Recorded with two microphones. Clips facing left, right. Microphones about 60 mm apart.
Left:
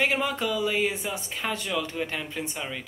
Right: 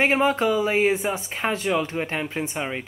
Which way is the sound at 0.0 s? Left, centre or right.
Right.